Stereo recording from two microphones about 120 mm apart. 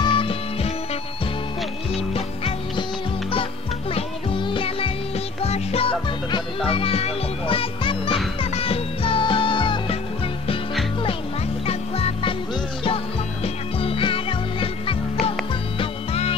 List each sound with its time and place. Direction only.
0.0 s music: 45° left (ahead or behind)
2.1 s music: 55° left (ahead or behind)
3.9 s music: 45° left (ahead or behind)
11.6 s music: 50° left (ahead or behind)